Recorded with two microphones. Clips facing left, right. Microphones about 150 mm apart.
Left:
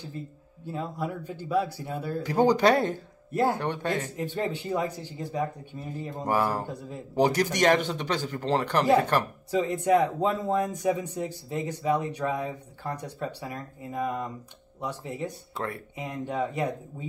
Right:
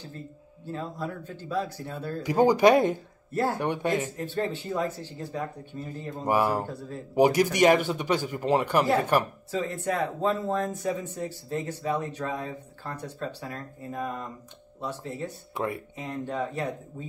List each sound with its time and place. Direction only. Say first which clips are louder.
0.7 s speech: left 1 dB; 15° left (ahead or behind)
2.2 s speech: right 2 dB; 10° right (ahead or behind)
3.3 s speech: left 2 dB; 15° left (ahead or behind)
3.5 s speech: right 2 dB; 15° right (ahead or behind)
4.2 s speech: even; 15° left (ahead or behind)
6.2 s speech: right 2 dB; 15° right (ahead or behind)
6.7 s speech: even; 15° left (ahead or behind)
7.2 s speech: right 3 dB; 10° right (ahead or behind)
9.5 s speech: left 8 dB; 15° left (ahead or behind)
15.5 s speech: right 7 dB; 15° right (ahead or behind)
16.0 s speech: left 2 dB; 15° left (ahead or behind)